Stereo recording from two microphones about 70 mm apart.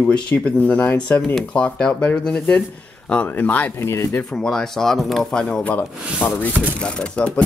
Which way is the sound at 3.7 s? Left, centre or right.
Left.